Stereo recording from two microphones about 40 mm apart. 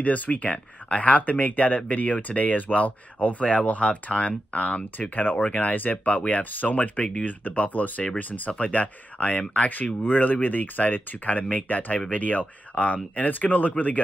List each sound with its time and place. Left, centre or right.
0.0 s speech: left
9.7 s speech: left